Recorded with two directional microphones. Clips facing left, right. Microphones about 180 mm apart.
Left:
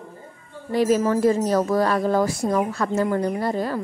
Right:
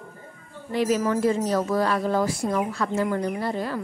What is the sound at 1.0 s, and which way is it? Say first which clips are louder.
A woman's voice: left 3 dB; 40° left (ahead or behind).